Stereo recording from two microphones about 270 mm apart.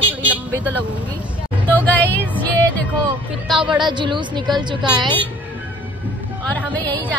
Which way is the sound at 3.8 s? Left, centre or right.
Centre.